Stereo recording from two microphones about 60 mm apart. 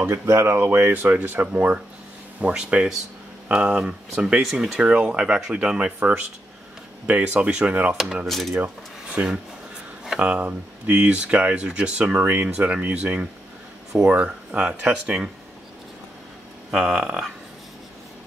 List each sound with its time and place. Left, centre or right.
0.0 s speech: right; by 5.9 s centre
7.1 s speech: right
7.9 s speech: centre
9.1 s speech: centre
16.7 s speech: centre